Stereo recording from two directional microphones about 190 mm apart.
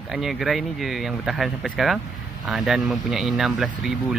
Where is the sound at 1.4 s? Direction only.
Centre (ahead or behind).